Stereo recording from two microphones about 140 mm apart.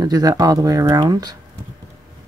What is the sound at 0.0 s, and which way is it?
Speech, 25° right (ahead or behind).